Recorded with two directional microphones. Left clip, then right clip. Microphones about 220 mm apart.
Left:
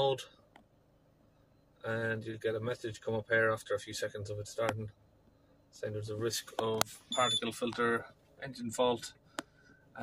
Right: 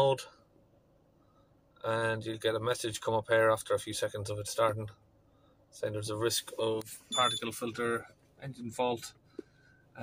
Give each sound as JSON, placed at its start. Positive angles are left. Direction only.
{"t": 1.8, "sound": "speech", "side_deg": -5}
{"t": 5.8, "sound": "speech", "side_deg": -5}